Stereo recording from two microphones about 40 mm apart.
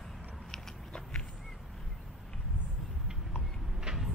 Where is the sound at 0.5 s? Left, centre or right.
Left.